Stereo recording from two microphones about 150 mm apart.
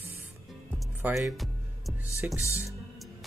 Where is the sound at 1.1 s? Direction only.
Centre (ahead or behind).